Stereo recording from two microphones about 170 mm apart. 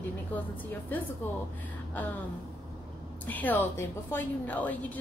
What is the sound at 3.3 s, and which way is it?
A woman's voice, 10° left (ahead or behind).